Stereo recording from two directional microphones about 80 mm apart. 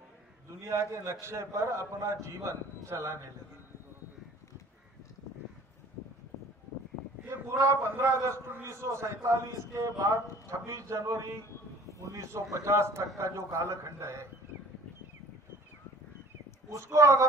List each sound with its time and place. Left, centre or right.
0.7 s a man's voice: right
8.0 s a man's voice: right
16.7 s a man's voice: right